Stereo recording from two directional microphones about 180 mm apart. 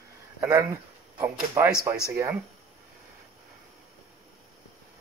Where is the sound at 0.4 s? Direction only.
15° right (ahead or behind).